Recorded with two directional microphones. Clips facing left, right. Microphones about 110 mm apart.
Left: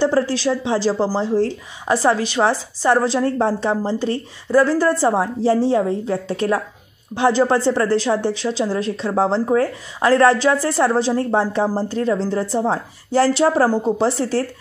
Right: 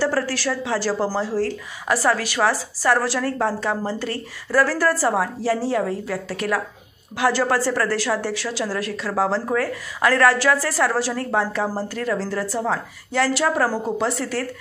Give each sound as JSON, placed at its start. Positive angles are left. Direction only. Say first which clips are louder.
{"t": 0.0, "sound": "a woman's voice", "louder": "left 5 dB", "side_deg": 20}